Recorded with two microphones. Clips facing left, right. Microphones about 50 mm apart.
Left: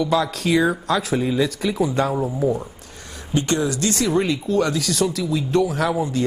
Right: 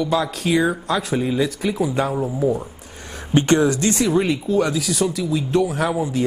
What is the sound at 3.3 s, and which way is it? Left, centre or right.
Speech, right.